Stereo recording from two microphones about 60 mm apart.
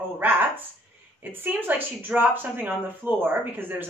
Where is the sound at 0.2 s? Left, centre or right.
Right.